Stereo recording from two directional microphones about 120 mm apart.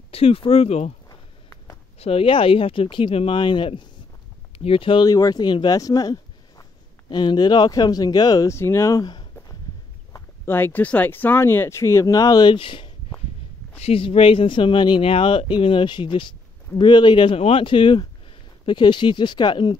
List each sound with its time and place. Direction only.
0.1 s speech: 55° left (ahead or behind)
1.0 s a sound: 25° left (ahead or behind)
2.0 s speech: 55° left (ahead or behind)
5.0 s speech: 30° left (ahead or behind)
9.0 s a sound: 40° left (ahead or behind)
10.1 s speech: 20° left (ahead or behind); by 19.8 s 40° left (ahead or behind)